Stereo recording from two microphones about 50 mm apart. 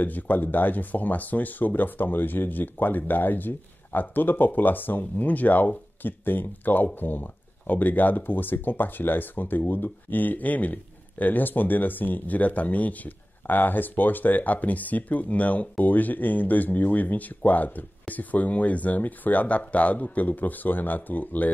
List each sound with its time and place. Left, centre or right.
0.0 s speech: left